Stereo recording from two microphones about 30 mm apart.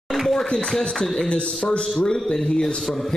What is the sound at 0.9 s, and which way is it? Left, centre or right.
Speech, centre.